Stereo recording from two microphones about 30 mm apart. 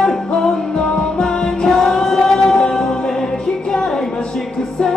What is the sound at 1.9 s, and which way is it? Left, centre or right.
Music, centre.